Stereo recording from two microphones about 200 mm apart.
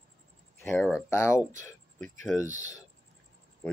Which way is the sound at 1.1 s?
15° left (ahead or behind).